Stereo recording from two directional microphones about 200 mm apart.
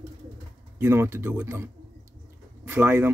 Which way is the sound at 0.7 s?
10° right (ahead or behind).